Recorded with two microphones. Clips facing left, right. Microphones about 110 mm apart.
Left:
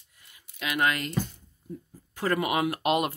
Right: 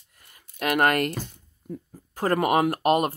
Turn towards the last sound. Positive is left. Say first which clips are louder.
# right 4 dB
turn(degrees=-45)  # may be behind; listen again after turning